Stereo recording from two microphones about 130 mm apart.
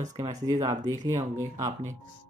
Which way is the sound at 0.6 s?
30° right (ahead or behind).